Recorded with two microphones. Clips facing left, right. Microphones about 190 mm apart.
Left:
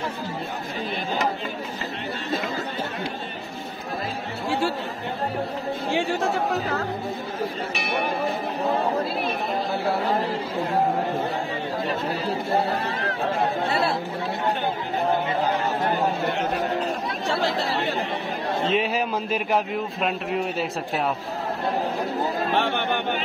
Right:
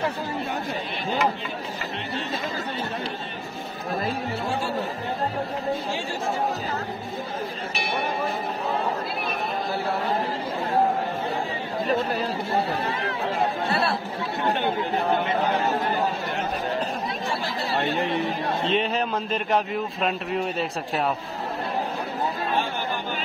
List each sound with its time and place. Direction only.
18.7 s speech: 5° left (ahead or behind)
22.5 s chatter: 70° left (ahead or behind)